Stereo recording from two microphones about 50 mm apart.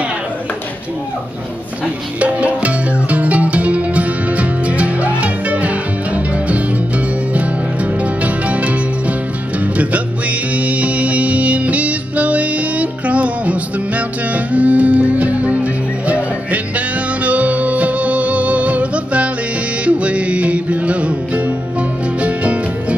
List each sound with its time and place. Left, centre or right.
2.1 s music: right
10.5 s music: right
22.2 s music: right